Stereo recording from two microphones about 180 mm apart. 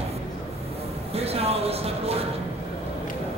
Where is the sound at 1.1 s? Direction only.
35° right (ahead or behind).